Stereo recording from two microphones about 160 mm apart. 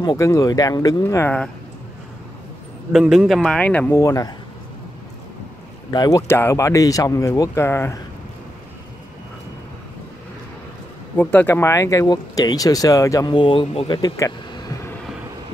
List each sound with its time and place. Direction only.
0.0 s speech: 25° left (ahead or behind)
2.9 s a man's voice: 5° right (ahead or behind)
4.0 s speech: 20° left (ahead or behind)
5.9 s speech: 25° left (ahead or behind)
11.1 s speech: 10° left (ahead or behind)